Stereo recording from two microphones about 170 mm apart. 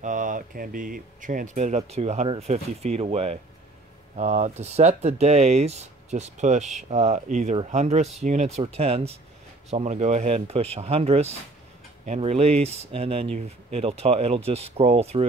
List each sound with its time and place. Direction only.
0.0 s speech: 50° right (ahead or behind)